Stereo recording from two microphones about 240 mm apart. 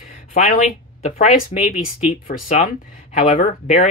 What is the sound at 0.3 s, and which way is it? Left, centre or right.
Speech, left.